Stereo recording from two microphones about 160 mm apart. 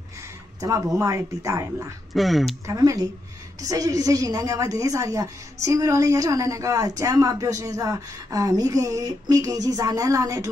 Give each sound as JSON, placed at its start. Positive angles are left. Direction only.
{"t": 0.6, "sound": "a woman's voice", "side_deg": -20}
{"t": 2.1, "sound": "speech", "side_deg": 0}
{"t": 2.6, "sound": "a woman's voice", "side_deg": -20}